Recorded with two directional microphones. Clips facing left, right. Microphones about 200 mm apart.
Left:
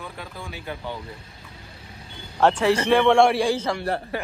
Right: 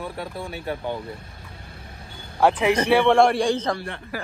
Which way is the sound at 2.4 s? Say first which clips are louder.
Even; 15° right (ahead or behind).